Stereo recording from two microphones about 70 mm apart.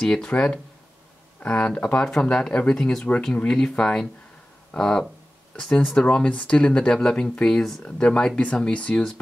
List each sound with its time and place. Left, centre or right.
0.0 s speech: centre